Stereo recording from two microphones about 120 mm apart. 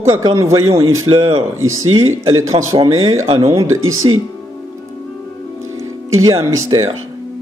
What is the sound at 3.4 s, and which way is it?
Speech, 25° right (ahead or behind).